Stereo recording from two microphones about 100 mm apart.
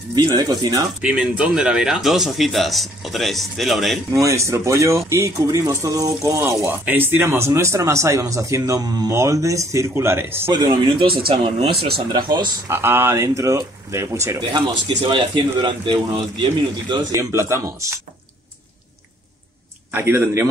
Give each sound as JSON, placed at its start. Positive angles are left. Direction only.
{"t": 0.1, "sound": "speech", "side_deg": -45}
{"t": 1.0, "sound": "speech", "side_deg": -10}
{"t": 4.1, "sound": "speech", "side_deg": -30}
{"t": 10.8, "sound": "speech", "side_deg": -55}
{"t": 12.6, "sound": "speech", "side_deg": -25}
{"t": 14.5, "sound": "speech", "side_deg": -50}
{"t": 17.1, "sound": "speech", "side_deg": -30}
{"t": 20.0, "sound": "speech", "side_deg": -25}